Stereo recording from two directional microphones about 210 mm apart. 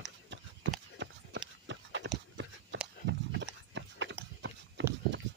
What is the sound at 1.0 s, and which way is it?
Run, 60° right (ahead or behind).